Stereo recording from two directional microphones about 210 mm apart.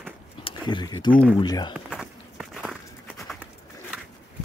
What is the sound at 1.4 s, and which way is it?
Speech, 20° left (ahead or behind).